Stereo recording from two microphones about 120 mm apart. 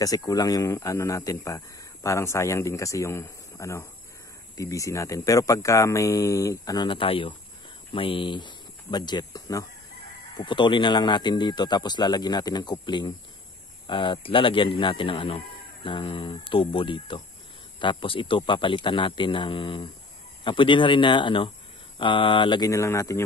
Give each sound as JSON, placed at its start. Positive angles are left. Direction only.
{"t": 0.0, "sound": "speech", "side_deg": 30}
{"t": 10.3, "sound": "speech", "side_deg": 40}
{"t": 22.7, "sound": "speech", "side_deg": 25}